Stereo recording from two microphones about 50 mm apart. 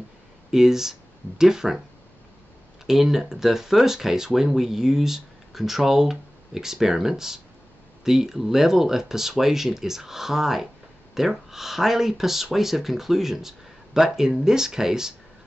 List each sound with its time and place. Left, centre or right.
0.5 s speech: centre
2.9 s speech: centre